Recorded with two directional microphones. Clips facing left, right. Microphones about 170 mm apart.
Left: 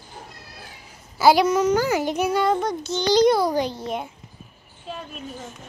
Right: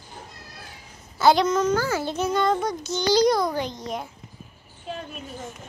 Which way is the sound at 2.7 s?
20° left (ahead or behind).